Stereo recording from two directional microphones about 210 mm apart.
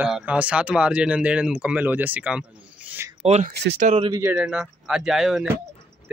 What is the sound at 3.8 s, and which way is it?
Speech, 30° right (ahead or behind).